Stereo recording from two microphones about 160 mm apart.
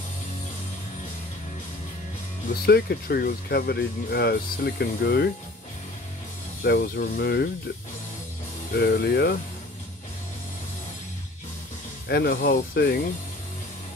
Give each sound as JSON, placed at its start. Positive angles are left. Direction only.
{"t": 2.6, "sound": "speech", "side_deg": 80}
{"t": 6.6, "sound": "speech", "side_deg": 65}
{"t": 8.7, "sound": "speech", "side_deg": 85}
{"t": 12.1, "sound": "speech", "side_deg": 75}